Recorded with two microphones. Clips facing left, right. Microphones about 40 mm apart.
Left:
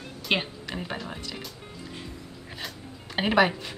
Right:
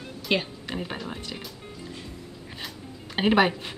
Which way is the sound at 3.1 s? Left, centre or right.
Centre.